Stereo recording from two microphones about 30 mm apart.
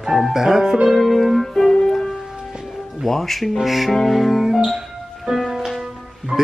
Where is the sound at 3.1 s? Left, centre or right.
Centre.